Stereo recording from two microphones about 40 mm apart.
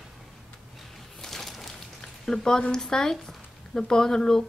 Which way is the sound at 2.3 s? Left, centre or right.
Centre.